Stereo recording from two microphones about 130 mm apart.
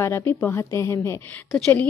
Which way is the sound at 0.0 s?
20° left (ahead or behind).